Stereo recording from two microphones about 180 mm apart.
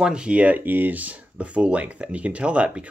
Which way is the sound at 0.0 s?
5° right (ahead or behind).